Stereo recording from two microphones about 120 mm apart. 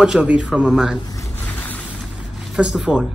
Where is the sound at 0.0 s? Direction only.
10° right (ahead or behind).